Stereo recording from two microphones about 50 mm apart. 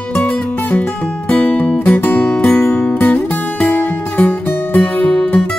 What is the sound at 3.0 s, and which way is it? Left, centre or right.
Music, left.